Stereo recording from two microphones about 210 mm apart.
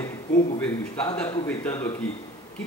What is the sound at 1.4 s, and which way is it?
Speech, 10° left (ahead or behind).